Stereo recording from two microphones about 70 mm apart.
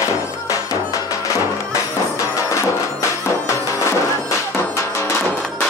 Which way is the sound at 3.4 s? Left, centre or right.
Left.